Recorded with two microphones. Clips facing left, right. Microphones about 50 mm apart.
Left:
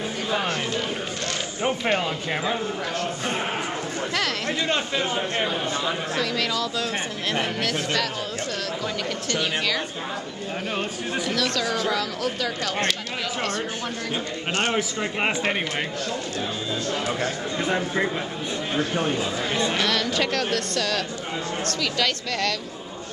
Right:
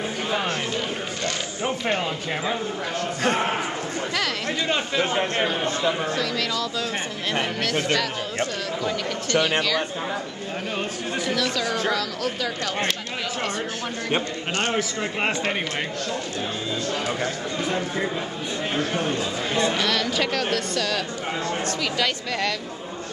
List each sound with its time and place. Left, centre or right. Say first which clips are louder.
0.3 s a sound: left 1 dB; centre
1.6 s speech: left 2 dB; centre
4.1 s speech: left 1 dB; centre
5.0 s a man's voice: right 2 dB; right
5.8 s speech: right 2 dB; centre
9.6 s speech: right 2 dB; centre
11.1 s speech: even; centre
14.5 s speech: left 1 dB; centre
16.9 s speech: left 1 dB; centre
17.6 s speech: left 2 dB; centre